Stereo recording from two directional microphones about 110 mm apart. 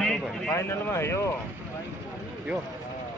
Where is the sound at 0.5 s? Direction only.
25° left (ahead or behind).